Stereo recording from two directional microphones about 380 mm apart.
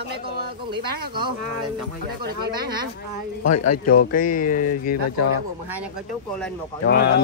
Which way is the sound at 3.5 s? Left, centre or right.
Left.